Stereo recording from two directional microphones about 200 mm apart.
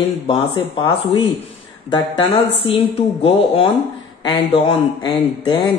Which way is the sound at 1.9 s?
25° left (ahead or behind).